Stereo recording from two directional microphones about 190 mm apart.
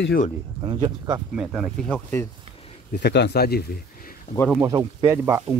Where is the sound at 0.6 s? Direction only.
20° right (ahead or behind).